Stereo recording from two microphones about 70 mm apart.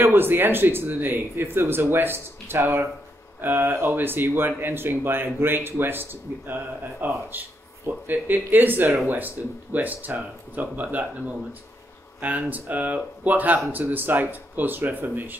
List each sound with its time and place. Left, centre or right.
0.0 s speech: right